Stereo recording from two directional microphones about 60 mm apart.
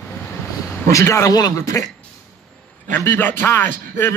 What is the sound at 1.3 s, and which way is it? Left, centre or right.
Speech, left.